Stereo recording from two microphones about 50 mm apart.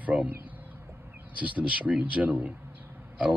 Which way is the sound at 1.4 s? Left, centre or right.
Right.